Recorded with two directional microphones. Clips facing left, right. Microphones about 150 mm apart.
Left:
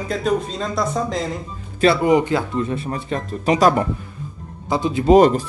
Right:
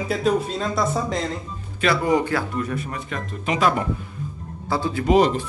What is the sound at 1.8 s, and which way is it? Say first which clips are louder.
Speech: left 5 dB; 25° left (ahead or behind).